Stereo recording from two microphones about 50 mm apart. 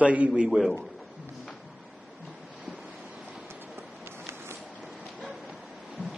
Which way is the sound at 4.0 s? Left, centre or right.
Right.